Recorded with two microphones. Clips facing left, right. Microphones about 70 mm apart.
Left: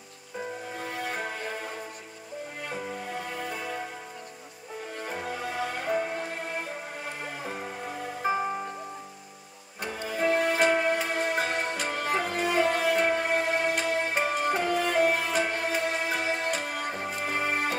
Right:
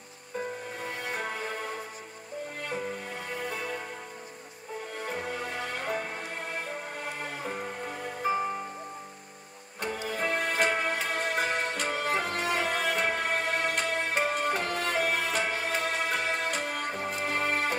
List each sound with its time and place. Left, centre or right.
0.7 s music: centre
2.6 s music: centre
5.0 s music: centre
10.0 s music: centre